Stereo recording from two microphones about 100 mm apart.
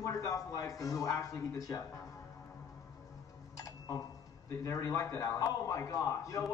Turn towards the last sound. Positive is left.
turn(degrees=35)  # may be behind; listen again after turning